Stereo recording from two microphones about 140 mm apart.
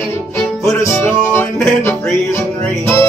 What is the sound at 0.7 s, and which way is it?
Music, 20° left (ahead or behind).